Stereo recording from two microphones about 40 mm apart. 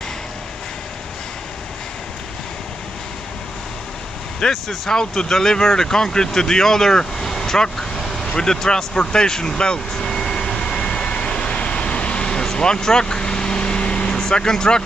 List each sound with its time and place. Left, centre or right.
4.5 s speech: centre
10.0 s vehicle: centre